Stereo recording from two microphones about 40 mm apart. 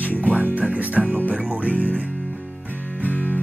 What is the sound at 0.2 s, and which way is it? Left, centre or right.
Music, right.